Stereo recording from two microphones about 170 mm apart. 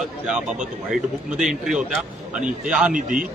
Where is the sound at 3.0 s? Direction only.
50° right (ahead or behind).